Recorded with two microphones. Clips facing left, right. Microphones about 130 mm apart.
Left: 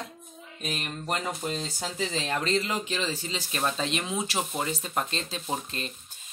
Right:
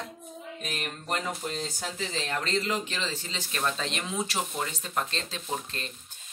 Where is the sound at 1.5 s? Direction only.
15° left (ahead or behind).